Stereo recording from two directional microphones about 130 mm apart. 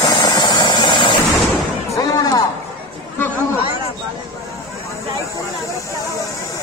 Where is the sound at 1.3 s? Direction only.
Centre (ahead or behind).